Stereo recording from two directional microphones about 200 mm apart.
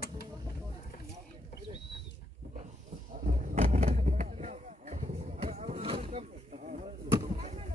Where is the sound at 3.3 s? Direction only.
45° right (ahead or behind).